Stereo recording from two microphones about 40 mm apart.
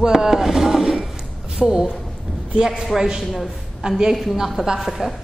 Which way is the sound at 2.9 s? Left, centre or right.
Centre.